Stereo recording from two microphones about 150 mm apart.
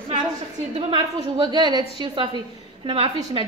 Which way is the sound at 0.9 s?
30° right (ahead or behind).